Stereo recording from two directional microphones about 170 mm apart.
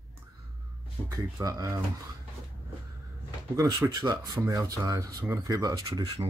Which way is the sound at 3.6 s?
20° right (ahead or behind).